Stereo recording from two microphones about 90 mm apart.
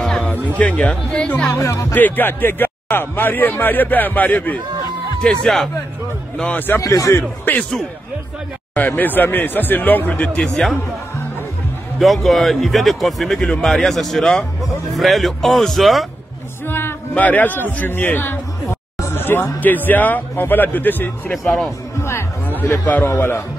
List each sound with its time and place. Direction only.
0.0 s music: centre (ahead or behind)
0.6 s speech: 15° left (ahead or behind)
1.5 s speech: 35° left (ahead or behind)
2.0 s speech: 20° left (ahead or behind)
5.2 s a man's voice: 5° left (ahead or behind)
6.8 s speech: 35° left (ahead or behind)
8.7 s speech: 20° left (ahead or behind)
10.5 s speech: centre (ahead or behind)
12.0 s speech: centre (ahead or behind)
16.6 s speech: 25° left (ahead or behind)
22.6 s speech: 20° left (ahead or behind)